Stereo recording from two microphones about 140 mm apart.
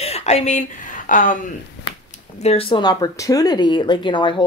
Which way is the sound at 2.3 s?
45° left (ahead or behind).